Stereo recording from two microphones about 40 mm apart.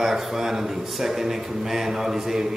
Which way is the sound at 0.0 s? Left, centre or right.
Centre.